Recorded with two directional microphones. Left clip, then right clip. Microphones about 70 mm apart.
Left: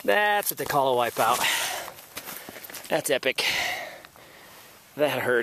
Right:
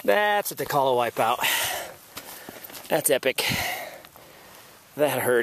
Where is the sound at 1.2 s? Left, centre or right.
Right.